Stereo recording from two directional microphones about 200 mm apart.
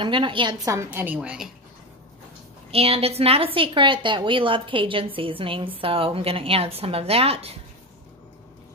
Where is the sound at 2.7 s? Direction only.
30° right (ahead or behind).